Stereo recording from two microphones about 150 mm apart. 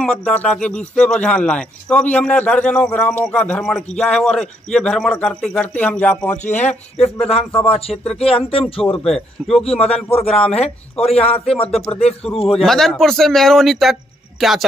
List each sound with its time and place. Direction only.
0.0 s a man's voice: 5° left (ahead or behind)
6.3 s speech: 50° left (ahead or behind)
7.5 s a man's voice: 10° left (ahead or behind)
8.5 s a man's voice: 40° left (ahead or behind)
8.9 s speech: centre (ahead or behind)
11.0 s a man's voice: 40° left (ahead or behind)
12.5 s speech: centre (ahead or behind)